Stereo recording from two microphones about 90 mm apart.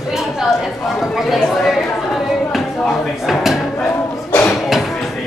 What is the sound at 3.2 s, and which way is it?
Speech, centre (ahead or behind).